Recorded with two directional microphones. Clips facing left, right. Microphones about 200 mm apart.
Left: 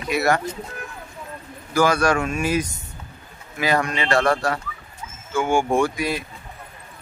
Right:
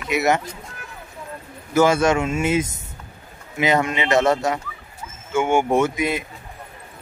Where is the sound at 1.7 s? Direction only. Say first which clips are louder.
Right 2 dB; 25° right (ahead or behind).